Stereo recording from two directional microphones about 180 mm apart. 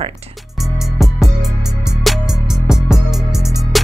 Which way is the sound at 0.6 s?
Centre (ahead or behind).